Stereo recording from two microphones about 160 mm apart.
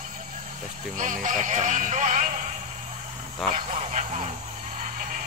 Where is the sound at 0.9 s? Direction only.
55° right (ahead or behind).